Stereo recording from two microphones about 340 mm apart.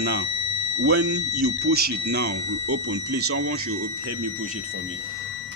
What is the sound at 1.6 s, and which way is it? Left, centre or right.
Speech, right.